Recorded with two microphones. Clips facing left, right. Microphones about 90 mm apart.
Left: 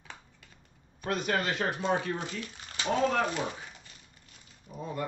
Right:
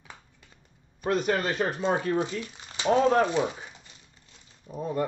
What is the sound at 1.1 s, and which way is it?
A man's voice, 40° right (ahead or behind).